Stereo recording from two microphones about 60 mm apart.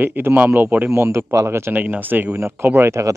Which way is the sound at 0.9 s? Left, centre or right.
Right.